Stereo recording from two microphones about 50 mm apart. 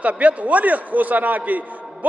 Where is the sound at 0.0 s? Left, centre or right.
Right.